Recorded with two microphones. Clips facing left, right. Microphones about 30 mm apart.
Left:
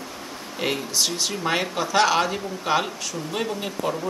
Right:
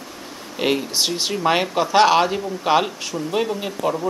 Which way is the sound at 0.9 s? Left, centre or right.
Right.